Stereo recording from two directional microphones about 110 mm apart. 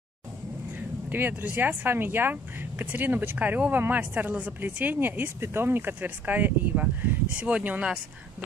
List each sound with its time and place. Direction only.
1.1 s speech: 20° right (ahead or behind)